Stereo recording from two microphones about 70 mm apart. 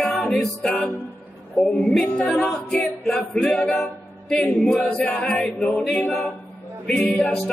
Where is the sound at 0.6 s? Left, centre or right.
Centre.